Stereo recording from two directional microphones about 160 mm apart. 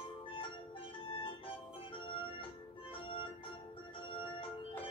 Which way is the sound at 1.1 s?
35° left (ahead or behind).